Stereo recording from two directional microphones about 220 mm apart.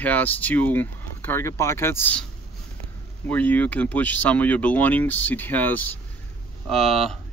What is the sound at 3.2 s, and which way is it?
Speech, 5° left (ahead or behind).